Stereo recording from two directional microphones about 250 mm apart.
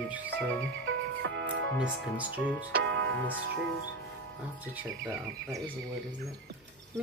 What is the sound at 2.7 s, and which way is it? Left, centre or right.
Music, right.